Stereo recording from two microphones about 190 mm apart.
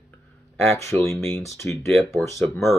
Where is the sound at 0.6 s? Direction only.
15° left (ahead or behind).